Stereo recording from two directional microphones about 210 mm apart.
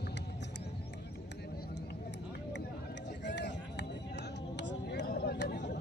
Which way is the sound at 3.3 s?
55° left (ahead or behind).